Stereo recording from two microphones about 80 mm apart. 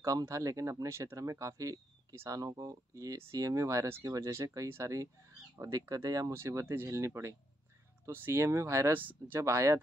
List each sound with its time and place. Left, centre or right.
0.0 s speech: right
4.3 s speech: right
6.3 s speech: right
8.9 s speech: right
9.4 s speech: right